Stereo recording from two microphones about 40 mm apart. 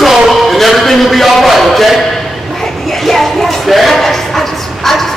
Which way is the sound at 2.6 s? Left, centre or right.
Centre.